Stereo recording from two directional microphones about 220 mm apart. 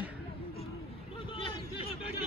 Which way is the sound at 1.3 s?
25° left (ahead or behind).